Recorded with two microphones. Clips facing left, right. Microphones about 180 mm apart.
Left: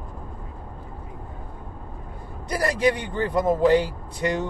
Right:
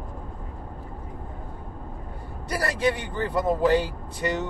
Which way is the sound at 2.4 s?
15° left (ahead or behind).